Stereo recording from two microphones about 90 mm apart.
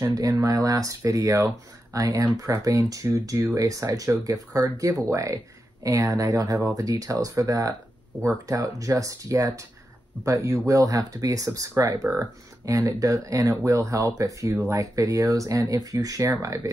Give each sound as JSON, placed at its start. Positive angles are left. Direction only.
{"t": 0.0, "sound": "speech", "side_deg": -45}